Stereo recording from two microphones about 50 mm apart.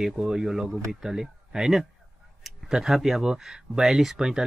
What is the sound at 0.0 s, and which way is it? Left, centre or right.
Speech, centre.